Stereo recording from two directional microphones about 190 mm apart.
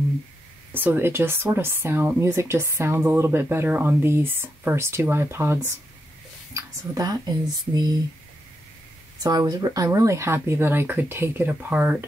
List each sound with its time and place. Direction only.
0.7 s speech: 10° right (ahead or behind)
9.2 s speech: 20° right (ahead or behind)